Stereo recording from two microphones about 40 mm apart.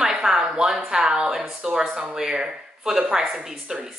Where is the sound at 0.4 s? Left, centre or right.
Right.